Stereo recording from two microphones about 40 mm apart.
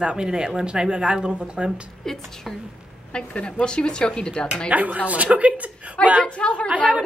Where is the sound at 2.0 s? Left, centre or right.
Centre.